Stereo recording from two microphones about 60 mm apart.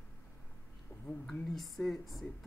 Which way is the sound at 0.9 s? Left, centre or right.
Left.